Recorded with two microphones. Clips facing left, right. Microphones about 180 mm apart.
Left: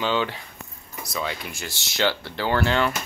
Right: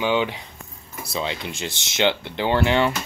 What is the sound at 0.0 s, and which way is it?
Speech, 15° right (ahead or behind).